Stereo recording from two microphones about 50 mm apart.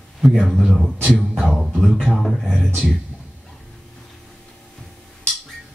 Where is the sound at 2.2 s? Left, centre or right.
Centre.